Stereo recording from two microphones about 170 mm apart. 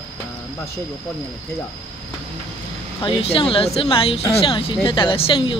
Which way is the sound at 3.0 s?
30° left (ahead or behind).